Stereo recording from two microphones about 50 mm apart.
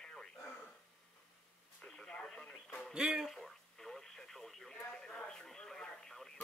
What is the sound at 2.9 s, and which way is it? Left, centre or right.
Speech, centre.